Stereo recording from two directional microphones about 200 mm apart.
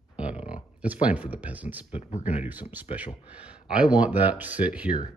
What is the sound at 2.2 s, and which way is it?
Speech, 10° right (ahead or behind).